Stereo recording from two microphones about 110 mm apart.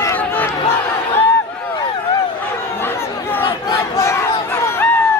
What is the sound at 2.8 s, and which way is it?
Chatter, 20° left (ahead or behind).